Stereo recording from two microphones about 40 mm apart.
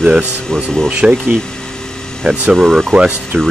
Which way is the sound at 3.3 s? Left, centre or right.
Right.